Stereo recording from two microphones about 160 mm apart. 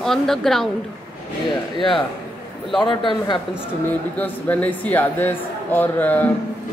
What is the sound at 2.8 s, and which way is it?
Speech, 30° left (ahead or behind).